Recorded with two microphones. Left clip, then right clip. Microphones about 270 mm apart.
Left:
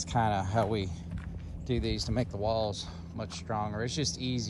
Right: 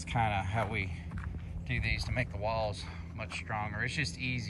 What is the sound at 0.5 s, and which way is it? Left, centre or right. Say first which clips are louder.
Speech: left 4 dB; left.